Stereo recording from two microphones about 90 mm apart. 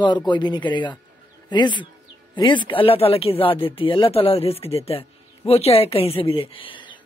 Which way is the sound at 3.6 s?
75° left (ahead or behind).